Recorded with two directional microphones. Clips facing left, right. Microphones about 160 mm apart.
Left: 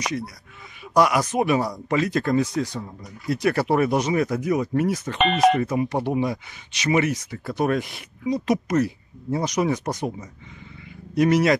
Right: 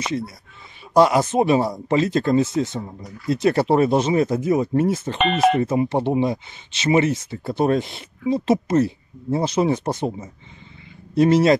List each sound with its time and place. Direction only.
0.9 s speech: 25° right (ahead or behind)
5.1 s speech: centre (ahead or behind)
5.6 s speech: 25° right (ahead or behind)